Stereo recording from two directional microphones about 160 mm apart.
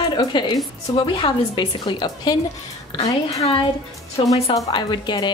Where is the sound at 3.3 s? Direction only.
40° left (ahead or behind).